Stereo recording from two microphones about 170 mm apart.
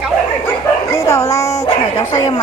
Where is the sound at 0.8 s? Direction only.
15° left (ahead or behind).